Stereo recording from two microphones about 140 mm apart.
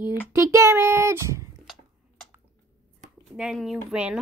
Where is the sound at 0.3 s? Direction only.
20° right (ahead or behind).